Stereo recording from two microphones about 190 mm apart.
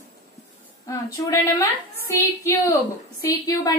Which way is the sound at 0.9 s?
15° left (ahead or behind).